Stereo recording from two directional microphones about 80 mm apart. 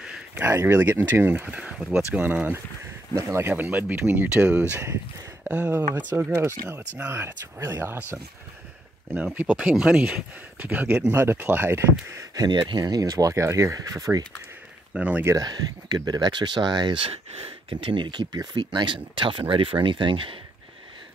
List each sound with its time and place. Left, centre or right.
0.5 s speech: right
0.7 s speech: right
1.6 s speech: centre
6.3 s speech: right
6.8 s speech: centre
7.2 s speech: right
9.1 s speech: centre
11.1 s speech: right
12.4 s speech: right
15.0 s speech: centre
15.4 s speech: right
19.1 s speech: right